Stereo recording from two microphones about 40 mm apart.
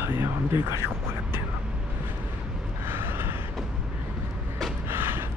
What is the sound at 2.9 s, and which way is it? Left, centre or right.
Gasp, right.